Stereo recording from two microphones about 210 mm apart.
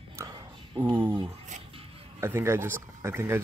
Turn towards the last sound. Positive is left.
turn(degrees=-10)  # may be behind; listen again after turning